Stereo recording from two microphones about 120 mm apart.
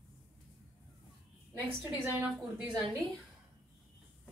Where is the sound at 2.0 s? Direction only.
15° right (ahead or behind).